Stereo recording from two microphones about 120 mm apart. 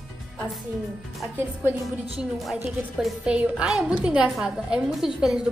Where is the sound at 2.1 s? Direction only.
5° right (ahead or behind).